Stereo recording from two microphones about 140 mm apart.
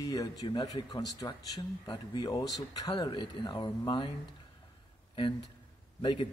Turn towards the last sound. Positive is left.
turn(degrees=35)  # may be behind; listen again after turning